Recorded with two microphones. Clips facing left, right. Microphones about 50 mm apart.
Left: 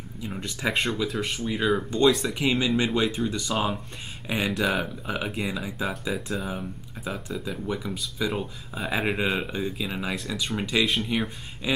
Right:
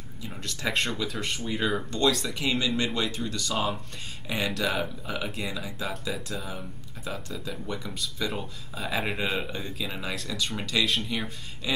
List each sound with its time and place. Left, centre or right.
0.2 s speech: centre
1.9 s speech: centre
8.7 s speech: centre